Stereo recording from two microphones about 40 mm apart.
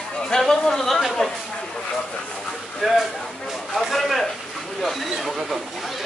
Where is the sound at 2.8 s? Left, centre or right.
Centre.